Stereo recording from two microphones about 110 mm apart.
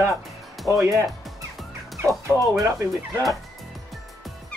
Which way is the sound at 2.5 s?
30° right (ahead or behind).